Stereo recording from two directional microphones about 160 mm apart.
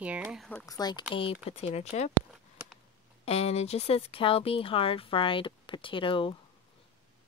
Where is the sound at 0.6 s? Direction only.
25° left (ahead or behind).